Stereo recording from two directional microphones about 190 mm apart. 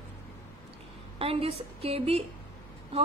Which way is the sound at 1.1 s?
30° right (ahead or behind).